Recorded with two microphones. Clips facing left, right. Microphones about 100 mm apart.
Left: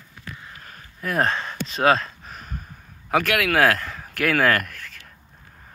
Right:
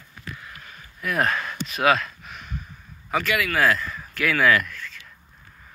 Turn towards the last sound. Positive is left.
turn(degrees=55)  # may be behind; listen again after turning